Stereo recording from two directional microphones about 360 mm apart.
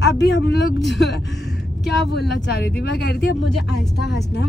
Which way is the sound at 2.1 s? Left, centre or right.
Left.